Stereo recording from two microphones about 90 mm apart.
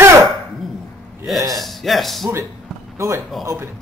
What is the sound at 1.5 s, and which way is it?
Speech, centre (ahead or behind).